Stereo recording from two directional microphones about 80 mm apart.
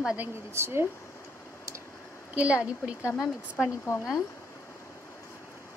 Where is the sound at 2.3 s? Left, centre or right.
Centre.